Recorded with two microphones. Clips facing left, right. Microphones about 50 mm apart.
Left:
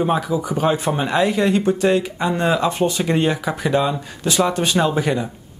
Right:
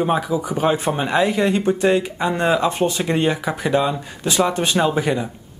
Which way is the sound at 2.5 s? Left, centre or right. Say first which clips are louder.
Even; centre.